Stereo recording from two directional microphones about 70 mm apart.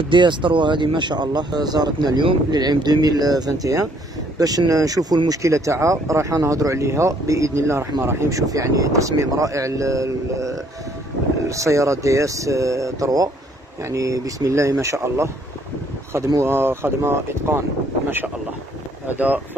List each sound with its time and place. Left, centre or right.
0.2 s speech: right
8.3 s speech: right
16.4 s speech: right
19.0 s speech: right